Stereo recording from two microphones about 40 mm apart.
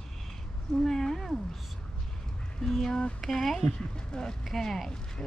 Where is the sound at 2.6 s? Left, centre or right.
Centre.